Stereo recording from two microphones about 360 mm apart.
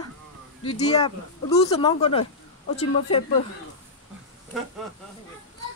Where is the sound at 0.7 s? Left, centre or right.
Centre.